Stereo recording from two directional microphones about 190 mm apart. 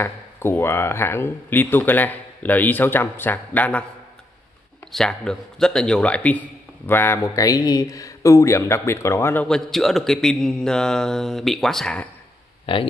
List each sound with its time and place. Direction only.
0.0 s speech: 10° left (ahead or behind)
4.9 s a man's voice: 5° left (ahead or behind)
12.7 s speech: 25° left (ahead or behind)